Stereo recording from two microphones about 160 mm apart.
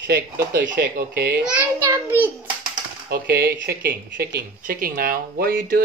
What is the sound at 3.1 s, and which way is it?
Speech, 80° right.